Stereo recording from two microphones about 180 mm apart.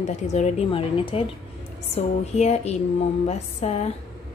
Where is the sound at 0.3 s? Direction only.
35° left (ahead or behind).